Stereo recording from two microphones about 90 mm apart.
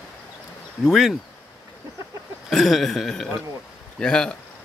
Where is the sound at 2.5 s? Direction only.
Centre (ahead or behind).